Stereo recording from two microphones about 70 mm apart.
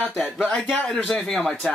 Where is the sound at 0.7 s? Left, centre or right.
Centre.